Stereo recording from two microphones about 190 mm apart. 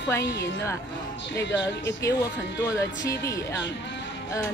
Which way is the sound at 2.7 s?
15° left (ahead or behind).